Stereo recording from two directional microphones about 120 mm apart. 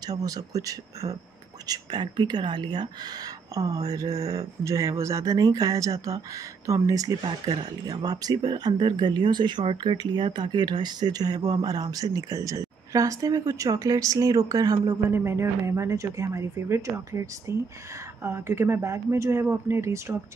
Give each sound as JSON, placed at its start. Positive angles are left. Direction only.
{"t": 0.0, "sound": "speech", "side_deg": -30}
{"t": 15.0, "sound": "speech", "side_deg": -20}